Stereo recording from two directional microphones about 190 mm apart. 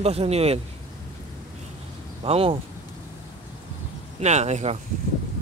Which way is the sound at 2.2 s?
30° right (ahead or behind).